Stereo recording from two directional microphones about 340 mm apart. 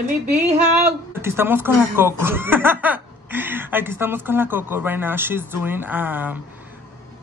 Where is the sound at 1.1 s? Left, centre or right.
Centre.